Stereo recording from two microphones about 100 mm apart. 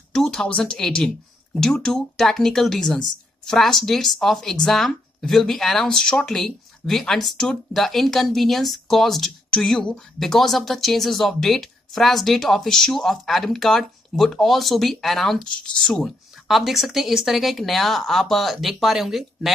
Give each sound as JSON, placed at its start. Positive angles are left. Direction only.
{"t": 0.1, "sound": "speech", "side_deg": 5}